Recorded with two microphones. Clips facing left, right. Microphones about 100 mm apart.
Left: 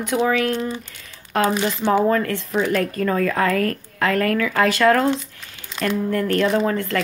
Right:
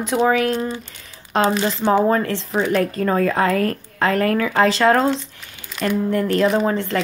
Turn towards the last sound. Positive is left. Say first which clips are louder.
# right 1 dB
turn(degrees=-25)  # may be behind; listen again after turning